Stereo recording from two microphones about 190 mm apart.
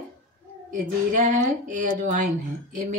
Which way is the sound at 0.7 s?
40° right (ahead or behind).